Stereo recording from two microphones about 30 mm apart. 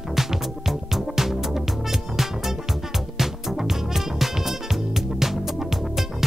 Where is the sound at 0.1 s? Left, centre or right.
Centre.